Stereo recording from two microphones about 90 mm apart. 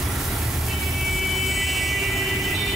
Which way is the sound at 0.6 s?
Centre (ahead or behind).